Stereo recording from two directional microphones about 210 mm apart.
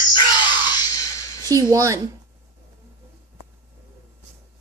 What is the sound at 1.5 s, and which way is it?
Speech, 15° right (ahead or behind).